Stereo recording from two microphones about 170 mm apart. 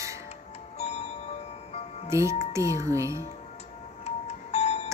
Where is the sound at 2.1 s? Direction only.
15° right (ahead or behind).